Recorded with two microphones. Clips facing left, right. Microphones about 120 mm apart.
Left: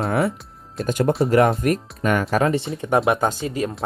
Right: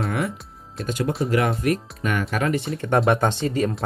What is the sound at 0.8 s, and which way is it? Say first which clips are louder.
Speech: left 5 dB; 50° left (ahead or behind).